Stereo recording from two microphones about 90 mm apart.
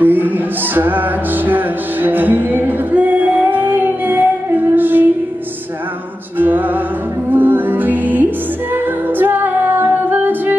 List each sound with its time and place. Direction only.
0.0 s music: 20° right (ahead or behind)
6.3 s music: 20° right (ahead or behind)